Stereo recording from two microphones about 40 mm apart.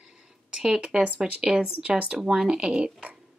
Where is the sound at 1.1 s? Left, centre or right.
Centre.